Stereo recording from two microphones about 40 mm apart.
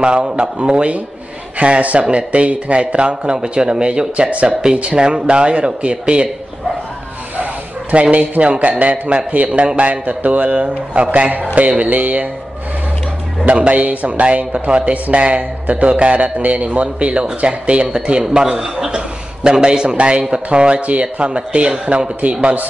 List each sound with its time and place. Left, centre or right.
0.0 s speech: right
7.9 s speech: right
10.9 s a man's voice: right
13.5 s speech: right
18.3 s a man's voice: centre